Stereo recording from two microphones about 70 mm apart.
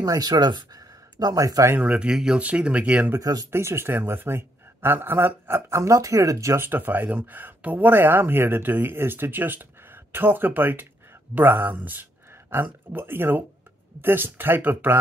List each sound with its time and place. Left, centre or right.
0.0 s speech: right
1.8 s speech: centre
3.2 s speech: right
3.5 s speech: right
6.6 s speech: right